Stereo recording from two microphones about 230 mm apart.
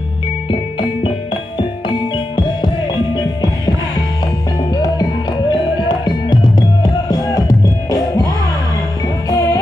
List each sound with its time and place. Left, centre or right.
0.5 s music: left
5.5 s music: centre
9.3 s music: centre